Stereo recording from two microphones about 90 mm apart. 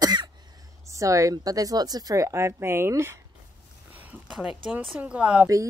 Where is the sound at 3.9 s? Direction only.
20° right (ahead or behind).